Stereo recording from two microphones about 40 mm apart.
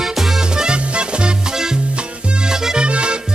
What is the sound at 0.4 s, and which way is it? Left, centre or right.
Music, centre.